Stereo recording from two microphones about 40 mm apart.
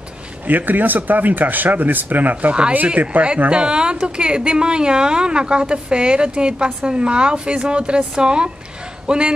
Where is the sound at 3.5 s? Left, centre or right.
Right.